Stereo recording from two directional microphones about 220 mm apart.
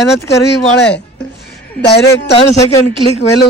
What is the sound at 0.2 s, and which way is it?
Speech, 10° left (ahead or behind).